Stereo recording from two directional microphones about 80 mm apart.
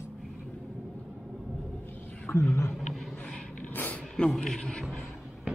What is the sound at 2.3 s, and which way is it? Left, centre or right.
Speech, left.